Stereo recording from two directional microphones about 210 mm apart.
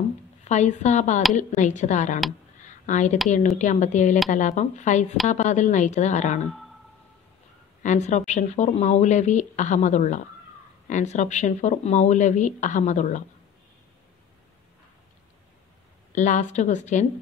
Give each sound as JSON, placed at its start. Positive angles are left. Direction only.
{"t": 0.5, "sound": "speech", "side_deg": 35}
{"t": 7.8, "sound": "speech", "side_deg": 35}
{"t": 16.2, "sound": "speech", "side_deg": 35}